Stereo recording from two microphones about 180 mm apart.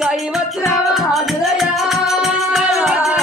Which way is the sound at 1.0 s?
Centre (ahead or behind).